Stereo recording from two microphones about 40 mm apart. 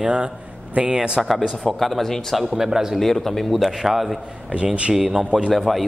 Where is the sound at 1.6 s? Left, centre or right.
Centre.